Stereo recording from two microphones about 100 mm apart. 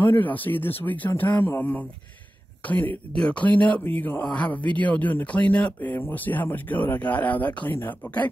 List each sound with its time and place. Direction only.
0.0 s speech: 20° left (ahead or behind)